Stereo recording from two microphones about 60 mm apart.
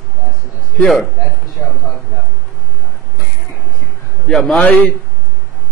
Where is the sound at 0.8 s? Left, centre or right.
Centre.